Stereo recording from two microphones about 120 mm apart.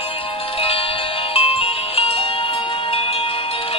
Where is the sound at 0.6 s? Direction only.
50° left (ahead or behind).